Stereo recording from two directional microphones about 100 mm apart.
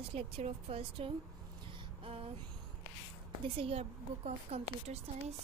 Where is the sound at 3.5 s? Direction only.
75° right (ahead or behind).